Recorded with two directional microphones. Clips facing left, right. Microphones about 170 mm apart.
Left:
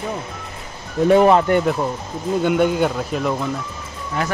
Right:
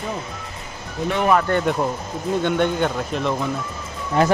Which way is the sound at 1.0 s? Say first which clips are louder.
Left 8 dB; 40° left (ahead or behind).